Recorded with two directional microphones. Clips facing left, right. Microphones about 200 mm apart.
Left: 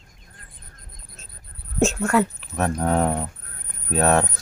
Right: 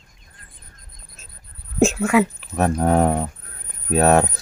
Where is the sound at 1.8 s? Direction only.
5° right (ahead or behind).